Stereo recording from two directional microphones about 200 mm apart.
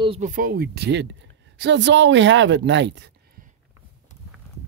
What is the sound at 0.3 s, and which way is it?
Speech, 45° right (ahead or behind).